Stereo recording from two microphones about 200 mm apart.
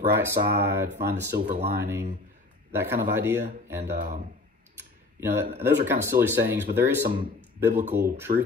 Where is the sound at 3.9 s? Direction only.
40° right (ahead or behind).